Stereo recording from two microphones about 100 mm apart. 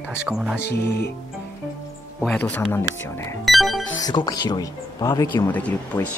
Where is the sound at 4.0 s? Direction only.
45° left (ahead or behind).